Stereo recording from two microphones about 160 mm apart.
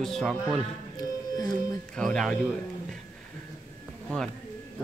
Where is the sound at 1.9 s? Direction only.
Centre (ahead or behind).